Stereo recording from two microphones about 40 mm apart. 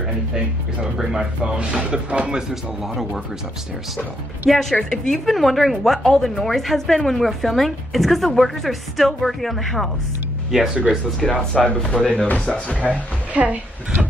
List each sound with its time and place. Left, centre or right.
0.9 s speech: centre
1.6 s speech: right
2.8 s a woman's voice: centre
4.5 s a woman's voice: centre
5.2 s a woman's voice: centre
10.5 s speech: centre
11.2 s a woman's voice: centre
11.9 s speech: left
12.8 s a woman's voice: right